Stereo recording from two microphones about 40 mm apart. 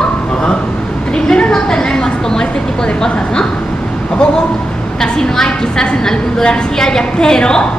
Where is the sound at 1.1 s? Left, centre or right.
Centre.